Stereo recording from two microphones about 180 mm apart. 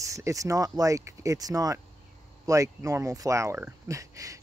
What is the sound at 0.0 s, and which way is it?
Speech, 15° right (ahead or behind).